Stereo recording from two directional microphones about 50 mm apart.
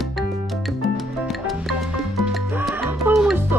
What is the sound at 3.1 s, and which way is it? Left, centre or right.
Music, right.